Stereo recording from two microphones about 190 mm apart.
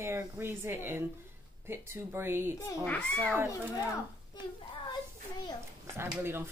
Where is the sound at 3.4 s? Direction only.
15° left (ahead or behind).